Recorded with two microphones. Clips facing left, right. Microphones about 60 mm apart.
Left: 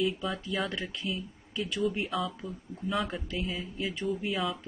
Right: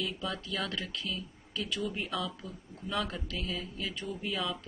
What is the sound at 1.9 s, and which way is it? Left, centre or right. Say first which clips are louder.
Speech: left 4 dB; centre.